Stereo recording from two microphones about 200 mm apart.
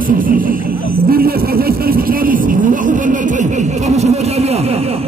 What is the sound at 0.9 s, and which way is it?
Vehicle, 50° right (ahead or behind).